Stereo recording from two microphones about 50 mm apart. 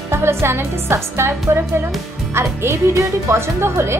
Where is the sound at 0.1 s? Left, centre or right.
Right.